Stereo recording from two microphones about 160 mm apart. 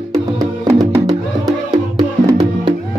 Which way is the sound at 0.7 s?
25° right (ahead or behind).